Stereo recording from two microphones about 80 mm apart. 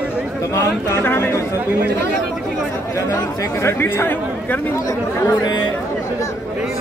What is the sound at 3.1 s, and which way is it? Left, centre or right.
Speech, left.